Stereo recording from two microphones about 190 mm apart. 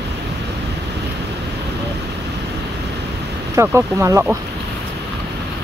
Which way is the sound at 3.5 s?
15° right (ahead or behind).